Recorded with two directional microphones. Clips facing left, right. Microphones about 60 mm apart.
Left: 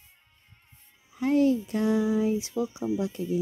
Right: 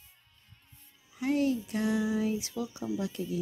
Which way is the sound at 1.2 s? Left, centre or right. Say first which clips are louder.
Left 6 dB; left.